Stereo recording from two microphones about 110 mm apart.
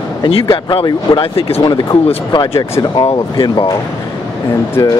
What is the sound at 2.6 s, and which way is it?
Speech, 40° left (ahead or behind).